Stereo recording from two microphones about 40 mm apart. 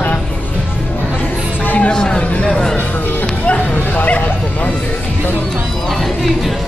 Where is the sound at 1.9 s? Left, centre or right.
Left.